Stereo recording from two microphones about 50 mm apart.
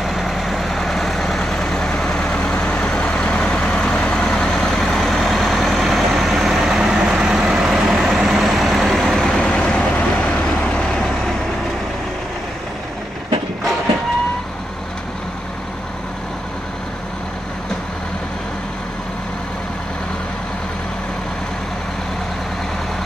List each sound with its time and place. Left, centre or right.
0.0 s vehicle: centre; by 10.3 s left